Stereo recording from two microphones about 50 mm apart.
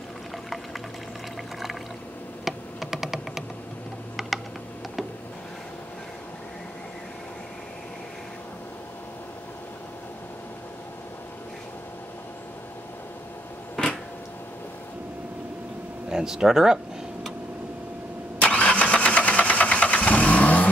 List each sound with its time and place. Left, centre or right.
2.4 s computer keyboard: centre
16.1 s tick-tock: centre
18.4 s vehicle: left